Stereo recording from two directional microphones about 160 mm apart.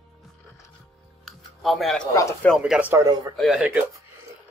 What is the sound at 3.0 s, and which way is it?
Speech, 25° right (ahead or behind).